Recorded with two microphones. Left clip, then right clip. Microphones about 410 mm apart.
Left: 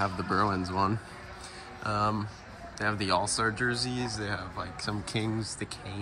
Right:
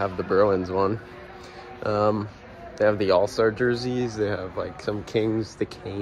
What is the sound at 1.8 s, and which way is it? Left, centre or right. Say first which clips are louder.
Speech: right 7 dB; centre.